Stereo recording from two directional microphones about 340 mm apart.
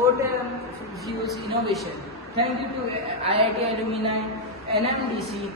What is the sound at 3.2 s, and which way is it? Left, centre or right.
Speech, centre.